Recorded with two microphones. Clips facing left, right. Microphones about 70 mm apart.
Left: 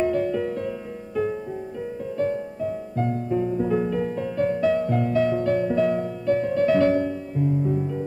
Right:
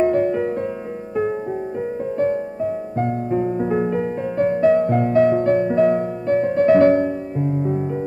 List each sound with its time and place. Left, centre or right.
0.0 s music: right
2.1 s music: right